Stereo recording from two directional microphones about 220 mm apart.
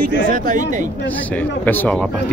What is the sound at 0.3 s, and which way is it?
Speech, 40° right (ahead or behind).